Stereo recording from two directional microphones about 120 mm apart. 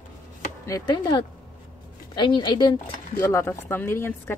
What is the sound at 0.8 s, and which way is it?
A woman's voice, 40° left (ahead or behind).